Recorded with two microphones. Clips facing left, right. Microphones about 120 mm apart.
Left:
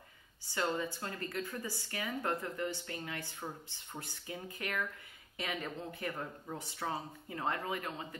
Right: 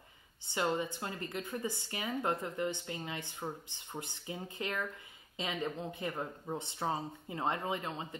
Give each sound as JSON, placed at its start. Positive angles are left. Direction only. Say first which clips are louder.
{"t": 0.5, "sound": "speech", "louder": "right 2 dB", "side_deg": -20}